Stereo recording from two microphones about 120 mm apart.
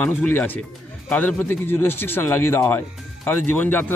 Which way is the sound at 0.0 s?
15° left (ahead or behind).